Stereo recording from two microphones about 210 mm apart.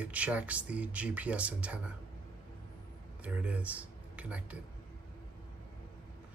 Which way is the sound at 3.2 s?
5° right (ahead or behind).